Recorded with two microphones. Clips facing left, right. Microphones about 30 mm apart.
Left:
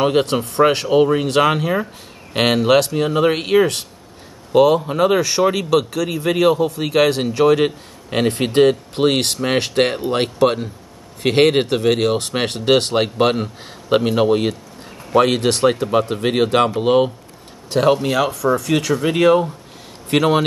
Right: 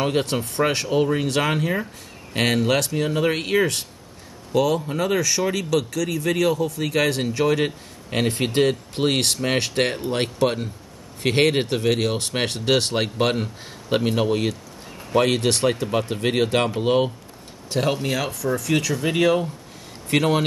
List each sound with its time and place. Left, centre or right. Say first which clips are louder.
0.0 s a man's voice: left 6 dB; left
1.2 s speech: left 7 dB; left
1.5 s a man's voice: left 4 dB; centre
2.9 s a man's voice: left 5 dB; centre
17.6 s speech: left 7 dB; left
18.5 s a man's voice: left 5 dB; centre